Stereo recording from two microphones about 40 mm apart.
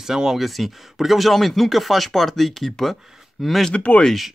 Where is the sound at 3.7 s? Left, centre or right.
Left.